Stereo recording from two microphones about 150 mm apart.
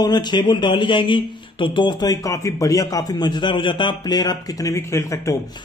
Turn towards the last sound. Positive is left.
turn(degrees=20)  # may be behind; listen again after turning